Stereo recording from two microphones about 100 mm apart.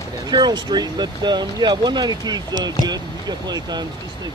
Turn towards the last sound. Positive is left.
turn(degrees=-45)  # may be behind; listen again after turning